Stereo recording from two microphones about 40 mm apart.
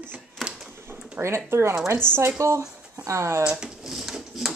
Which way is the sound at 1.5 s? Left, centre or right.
Right.